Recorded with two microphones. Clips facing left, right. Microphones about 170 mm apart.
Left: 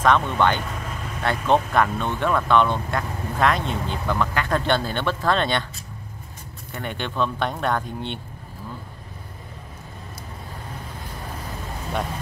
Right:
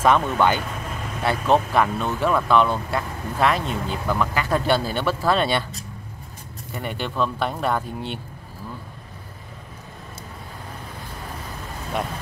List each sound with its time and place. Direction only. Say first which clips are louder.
0.0 s speech: right 1 dB; 10° right (ahead or behind)
6.7 s speech: right 1 dB; 5° right (ahead or behind)